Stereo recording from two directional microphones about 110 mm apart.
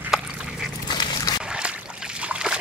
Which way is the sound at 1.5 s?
10° right (ahead or behind).